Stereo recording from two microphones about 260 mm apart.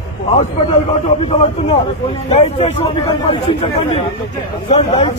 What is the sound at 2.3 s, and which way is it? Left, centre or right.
Speech, left.